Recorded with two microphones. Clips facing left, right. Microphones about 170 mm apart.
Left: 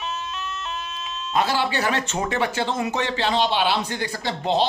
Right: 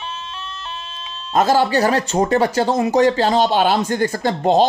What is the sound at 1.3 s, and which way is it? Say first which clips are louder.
Speech: right 7 dB; 45° right (ahead or behind).